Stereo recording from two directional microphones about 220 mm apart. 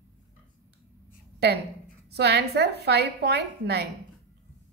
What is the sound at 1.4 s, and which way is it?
A woman's voice, 50° right (ahead or behind).